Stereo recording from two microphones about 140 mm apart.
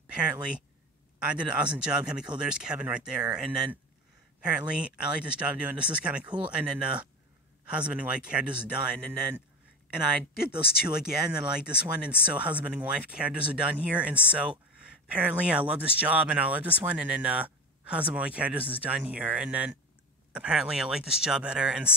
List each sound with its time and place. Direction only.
0.1 s a sound: 10° right (ahead or behind)
1.2 s speech: 10° right (ahead or behind)
9.9 s speech: 5° right (ahead or behind)